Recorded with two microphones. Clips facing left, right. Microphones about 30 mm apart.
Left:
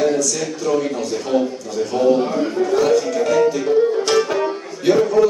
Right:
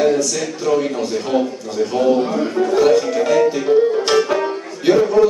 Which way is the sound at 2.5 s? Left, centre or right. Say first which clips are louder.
Right 3 dB; right.